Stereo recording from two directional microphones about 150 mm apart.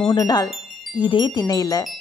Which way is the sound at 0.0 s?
30° left (ahead or behind).